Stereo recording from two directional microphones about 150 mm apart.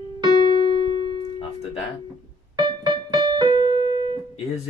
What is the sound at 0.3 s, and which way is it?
Keyboard, 30° left (ahead or behind).